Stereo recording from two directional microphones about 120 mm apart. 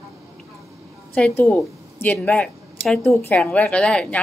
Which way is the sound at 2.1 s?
5° left (ahead or behind).